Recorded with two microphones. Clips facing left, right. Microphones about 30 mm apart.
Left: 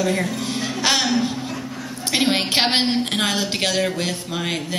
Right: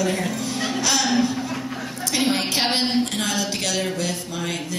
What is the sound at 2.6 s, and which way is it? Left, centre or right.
A woman's voice, left.